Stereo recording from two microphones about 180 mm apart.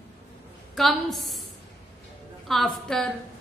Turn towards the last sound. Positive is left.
turn(degrees=5)  # may be behind; listen again after turning